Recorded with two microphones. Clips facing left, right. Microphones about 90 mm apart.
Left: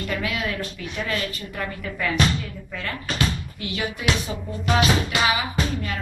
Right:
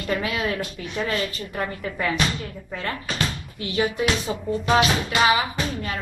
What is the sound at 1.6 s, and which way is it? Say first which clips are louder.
Speech: right 2 dB; 30° right (ahead or behind).